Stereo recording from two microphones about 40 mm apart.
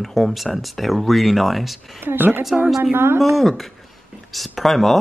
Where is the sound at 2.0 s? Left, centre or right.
Right.